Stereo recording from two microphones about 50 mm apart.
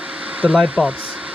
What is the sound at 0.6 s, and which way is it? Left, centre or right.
Speech, centre.